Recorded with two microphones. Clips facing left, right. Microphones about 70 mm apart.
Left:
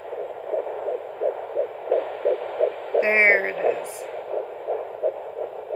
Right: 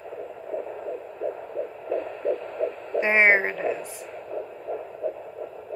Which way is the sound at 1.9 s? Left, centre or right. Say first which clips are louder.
Left 4 dB; left.